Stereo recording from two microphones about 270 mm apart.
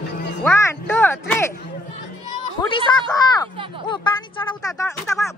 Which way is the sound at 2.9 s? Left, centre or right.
Centre.